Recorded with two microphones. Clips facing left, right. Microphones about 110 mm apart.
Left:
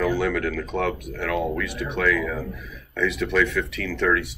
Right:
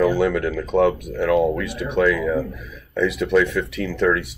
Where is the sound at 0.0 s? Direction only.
15° right (ahead or behind).